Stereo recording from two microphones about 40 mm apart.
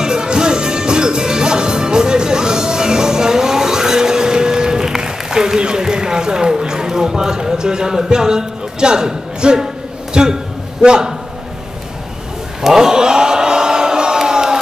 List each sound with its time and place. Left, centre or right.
0.0 s music: centre
5.6 s run: centre
10.1 s a man's voice: centre
12.6 s a sound: centre